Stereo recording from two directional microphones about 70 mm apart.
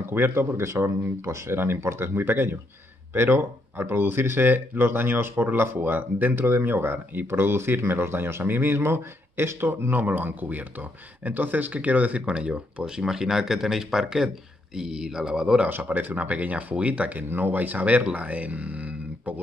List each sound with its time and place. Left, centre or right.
0.0 s speech: right; by 15.7 s centre
15.7 s speech: right